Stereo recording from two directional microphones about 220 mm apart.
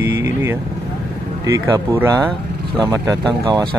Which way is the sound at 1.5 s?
10° right (ahead or behind).